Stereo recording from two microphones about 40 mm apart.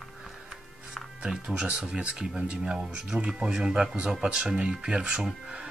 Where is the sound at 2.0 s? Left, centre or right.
Right.